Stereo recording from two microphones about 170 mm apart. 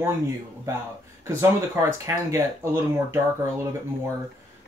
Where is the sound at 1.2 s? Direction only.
15° right (ahead or behind).